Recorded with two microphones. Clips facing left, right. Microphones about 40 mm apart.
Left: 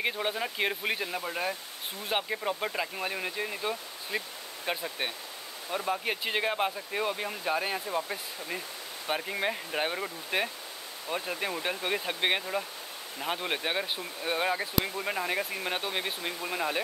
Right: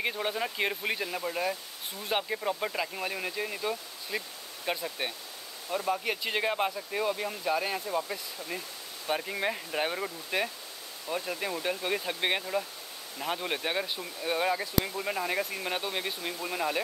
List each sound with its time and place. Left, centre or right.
0.0 s speech: centre
4.1 s speech: left
4.6 s speech: centre